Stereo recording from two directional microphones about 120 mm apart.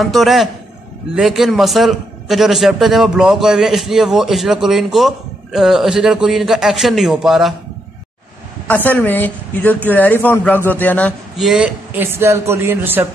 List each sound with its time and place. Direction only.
0.0 s a man's voice: centre (ahead or behind)
8.6 s a woman's voice: 15° left (ahead or behind)
11.3 s speech: 5° right (ahead or behind)